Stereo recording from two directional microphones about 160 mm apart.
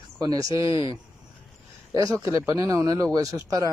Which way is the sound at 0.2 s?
20° right (ahead or behind).